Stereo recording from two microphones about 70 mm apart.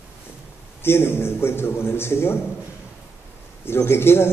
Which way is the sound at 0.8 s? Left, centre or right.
Left.